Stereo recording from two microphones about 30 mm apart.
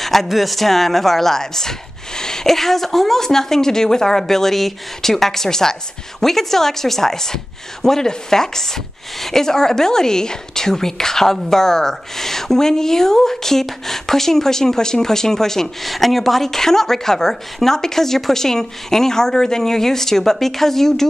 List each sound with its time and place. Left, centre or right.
0.0 s a sound: centre
0.3 s speech: centre; by 2.5 s left
2.5 s speech: centre
15.8 s speech: centre